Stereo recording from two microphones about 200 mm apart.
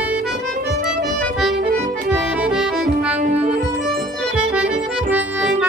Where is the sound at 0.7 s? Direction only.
50° right (ahead or behind).